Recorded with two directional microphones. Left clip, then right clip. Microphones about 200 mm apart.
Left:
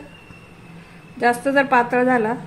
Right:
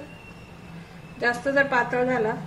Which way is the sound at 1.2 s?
55° left (ahead or behind).